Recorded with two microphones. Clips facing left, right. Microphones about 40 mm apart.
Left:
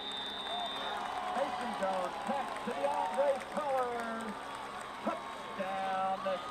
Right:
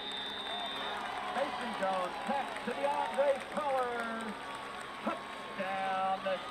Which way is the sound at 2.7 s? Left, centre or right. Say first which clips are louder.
Even; right.